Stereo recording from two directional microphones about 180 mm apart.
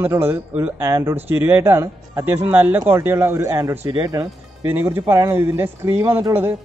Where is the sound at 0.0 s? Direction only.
15° right (ahead or behind).